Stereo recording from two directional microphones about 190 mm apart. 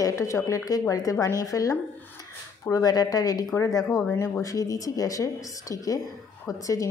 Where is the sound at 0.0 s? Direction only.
15° left (ahead or behind).